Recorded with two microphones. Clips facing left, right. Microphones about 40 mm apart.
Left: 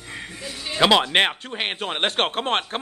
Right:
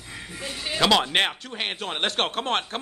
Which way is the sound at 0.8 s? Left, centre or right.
Centre.